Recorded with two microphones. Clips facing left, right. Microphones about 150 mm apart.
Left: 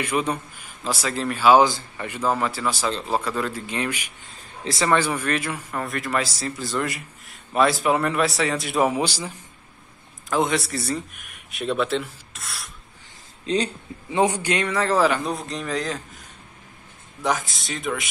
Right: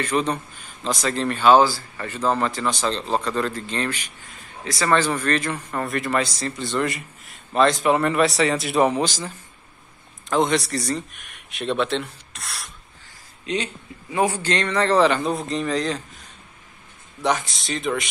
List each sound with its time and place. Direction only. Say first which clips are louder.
0.0 s speech: right 1 dB; 10° left (ahead or behind)
1.6 s speech: even; 20° left (ahead or behind)
4.2 s a sound: left 1 dB; 25° left (ahead or behind)
4.8 s a man's voice: right 1 dB; 10° left (ahead or behind)
13.5 s speech: left 3 dB; 35° left (ahead or behind)
14.1 s a man's voice: left 1 dB; 20° left (ahead or behind); by 18.0 s centre (ahead or behind)